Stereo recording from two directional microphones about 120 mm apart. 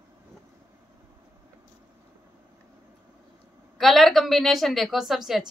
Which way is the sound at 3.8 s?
Centre (ahead or behind).